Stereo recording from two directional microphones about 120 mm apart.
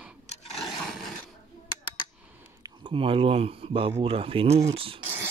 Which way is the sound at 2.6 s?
45° right (ahead or behind).